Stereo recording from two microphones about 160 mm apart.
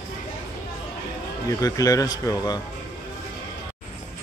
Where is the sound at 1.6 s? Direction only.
20° left (ahead or behind).